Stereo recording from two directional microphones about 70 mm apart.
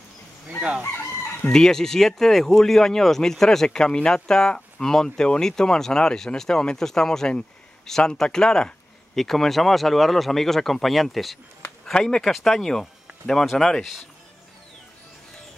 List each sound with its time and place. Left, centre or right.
0.6 s chicken: centre
0.8 s chicken: left
1.5 s speech: centre